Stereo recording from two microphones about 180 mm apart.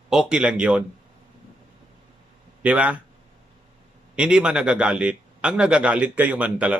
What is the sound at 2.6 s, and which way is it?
Speech, 10° right (ahead or behind).